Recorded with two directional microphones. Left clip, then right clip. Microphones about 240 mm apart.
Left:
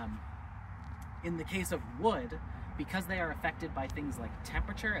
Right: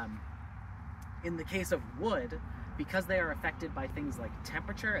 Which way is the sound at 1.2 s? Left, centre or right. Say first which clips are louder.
Right 1 dB; left.